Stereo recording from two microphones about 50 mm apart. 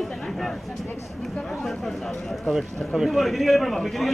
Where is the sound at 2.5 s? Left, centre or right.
Centre.